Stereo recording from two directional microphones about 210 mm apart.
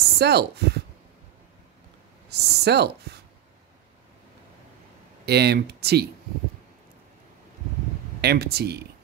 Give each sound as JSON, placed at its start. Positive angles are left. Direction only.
{"t": 0.2, "sound": "speech", "side_deg": -50}
{"t": 2.2, "sound": "a woman's voice", "side_deg": -50}
{"t": 5.2, "sound": "speech", "side_deg": -50}
{"t": 8.2, "sound": "speech", "side_deg": -50}